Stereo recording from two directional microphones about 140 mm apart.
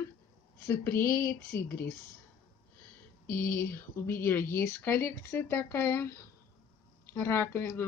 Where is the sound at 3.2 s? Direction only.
15° left (ahead or behind).